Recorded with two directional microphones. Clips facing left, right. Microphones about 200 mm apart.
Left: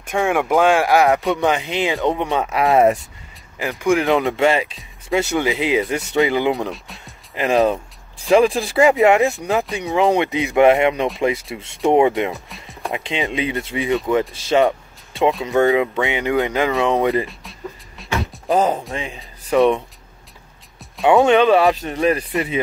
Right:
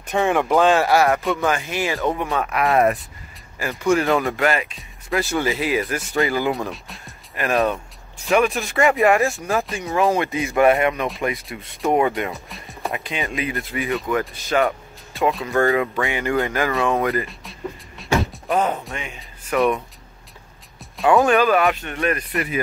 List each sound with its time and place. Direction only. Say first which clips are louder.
0.1 s speech: left 1 dB; 10° left (ahead or behind); by 3.0 s 25° left (ahead or behind)
3.5 s speech: left 1 dB; 15° left (ahead or behind)
4.4 s speech: left 4 dB; 30° left (ahead or behind)
6.7 s speech: left 2 dB; centre (ahead or behind)
7.3 s speech: left 4 dB; 25° left (ahead or behind)
12.4 s music: even; centre (ahead or behind)
12.9 s speech: left 5 dB; 25° left (ahead or behind)
15.4 s speech: left 3 dB; 20° left (ahead or behind)
17.3 s music: right 1 dB; centre (ahead or behind)
18.5 s speech: left 4 dB; 30° left (ahead or behind)
21.1 s speech: left 3 dB; 25° left (ahead or behind)